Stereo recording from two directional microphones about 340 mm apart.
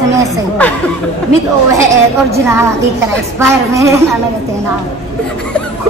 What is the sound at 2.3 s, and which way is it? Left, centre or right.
A woman's voice, centre.